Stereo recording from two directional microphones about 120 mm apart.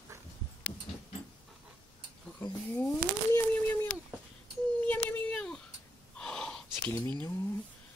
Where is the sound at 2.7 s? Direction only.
15° left (ahead or behind).